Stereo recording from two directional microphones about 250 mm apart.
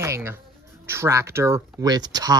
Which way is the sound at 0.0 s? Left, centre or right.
Centre.